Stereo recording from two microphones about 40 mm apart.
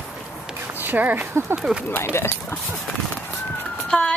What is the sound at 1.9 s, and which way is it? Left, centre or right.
Speech, left.